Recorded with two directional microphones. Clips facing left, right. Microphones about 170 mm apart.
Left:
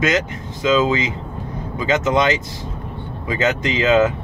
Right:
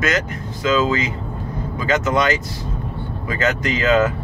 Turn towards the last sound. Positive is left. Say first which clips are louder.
# left 1 dB
turn(degrees=20)  # may be behind; listen again after turning